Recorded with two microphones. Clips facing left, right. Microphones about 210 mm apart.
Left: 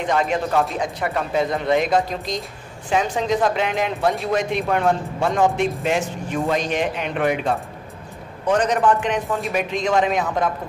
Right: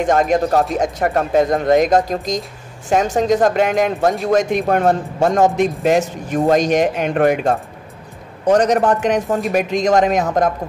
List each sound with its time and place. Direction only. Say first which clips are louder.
0.0 s speech: right 6 dB; 45° right (ahead or behind)